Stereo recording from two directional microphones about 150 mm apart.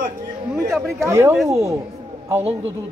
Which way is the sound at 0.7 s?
Centre (ahead or behind).